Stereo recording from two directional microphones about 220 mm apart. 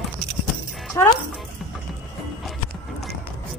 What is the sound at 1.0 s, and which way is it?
Speech, 10° left (ahead or behind).